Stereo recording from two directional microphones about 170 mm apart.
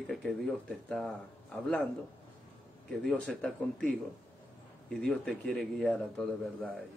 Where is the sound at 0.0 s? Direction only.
Centre (ahead or behind).